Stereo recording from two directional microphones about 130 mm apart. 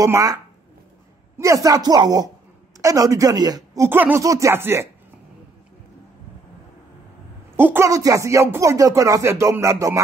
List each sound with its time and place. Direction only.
0.0 s speech: 25° right (ahead or behind)
1.4 s speech: 25° right (ahead or behind)
7.5 s speech: 15° right (ahead or behind)